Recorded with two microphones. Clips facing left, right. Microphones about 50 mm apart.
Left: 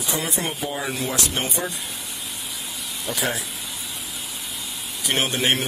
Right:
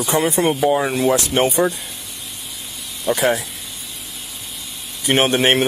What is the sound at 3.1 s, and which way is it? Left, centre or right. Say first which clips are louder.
Speech: right 8 dB; right.